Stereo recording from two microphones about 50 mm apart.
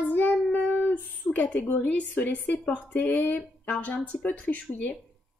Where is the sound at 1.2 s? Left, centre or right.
Left.